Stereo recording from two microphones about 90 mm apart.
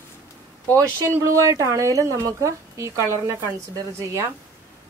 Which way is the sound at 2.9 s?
30° left (ahead or behind).